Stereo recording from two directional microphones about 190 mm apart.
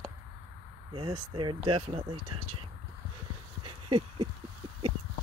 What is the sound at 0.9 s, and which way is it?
Speech, 25° right (ahead or behind).